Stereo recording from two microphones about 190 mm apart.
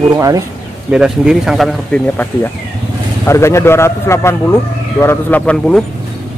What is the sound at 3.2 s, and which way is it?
A man's voice, 15° left (ahead or behind).